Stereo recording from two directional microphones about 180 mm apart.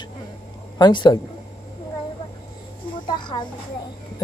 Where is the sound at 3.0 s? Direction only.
25° left (ahead or behind).